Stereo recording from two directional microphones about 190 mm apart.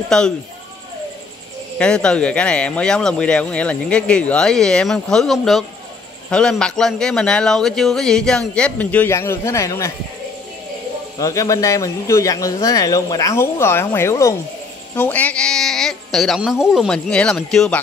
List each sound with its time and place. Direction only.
0.1 s speech: 5° left (ahead or behind)
1.8 s speech: 5° left (ahead or behind)
11.1 s speech: 15° left (ahead or behind)